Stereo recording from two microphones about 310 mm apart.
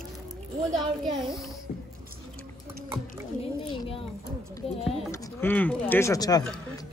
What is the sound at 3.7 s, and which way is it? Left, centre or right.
Speech, centre.